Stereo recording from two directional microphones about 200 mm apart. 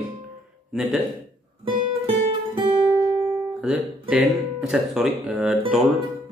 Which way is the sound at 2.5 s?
25° right (ahead or behind).